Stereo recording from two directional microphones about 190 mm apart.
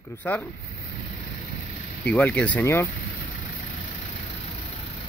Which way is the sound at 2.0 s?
10° left (ahead or behind).